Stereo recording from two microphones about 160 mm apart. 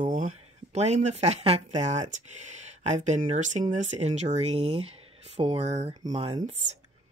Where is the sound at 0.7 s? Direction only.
45° right (ahead or behind).